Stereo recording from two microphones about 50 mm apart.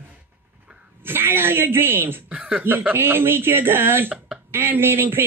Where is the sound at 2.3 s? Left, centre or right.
Right.